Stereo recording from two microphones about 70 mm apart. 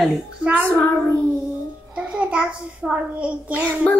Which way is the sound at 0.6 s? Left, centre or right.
Left.